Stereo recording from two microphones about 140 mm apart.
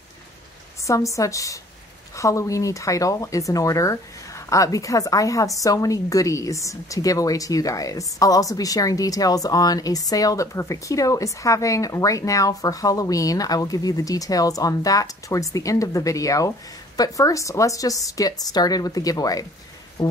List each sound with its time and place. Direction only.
0.8 s speech: 25° left (ahead or behind)
20.0 s music: 35° left (ahead or behind)